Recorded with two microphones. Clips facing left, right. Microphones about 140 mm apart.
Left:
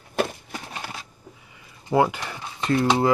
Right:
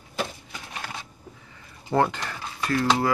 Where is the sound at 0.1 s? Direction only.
55° left (ahead or behind).